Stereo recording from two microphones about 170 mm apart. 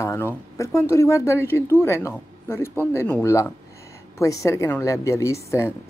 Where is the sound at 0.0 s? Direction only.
15° left (ahead or behind).